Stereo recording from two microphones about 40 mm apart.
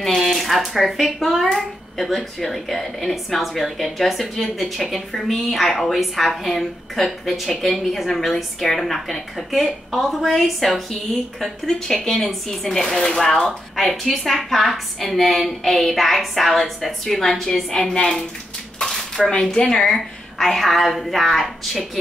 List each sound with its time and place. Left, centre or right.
0.0 s speech: centre
12.0 s speech: centre
18.9 s dishes: centre
19.5 s a woman's voice: left
19.8 s speech: centre